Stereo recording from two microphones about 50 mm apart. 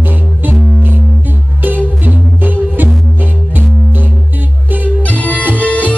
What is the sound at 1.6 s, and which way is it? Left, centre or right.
Music, right.